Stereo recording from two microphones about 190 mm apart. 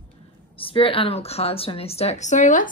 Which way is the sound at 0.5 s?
30° left (ahead or behind).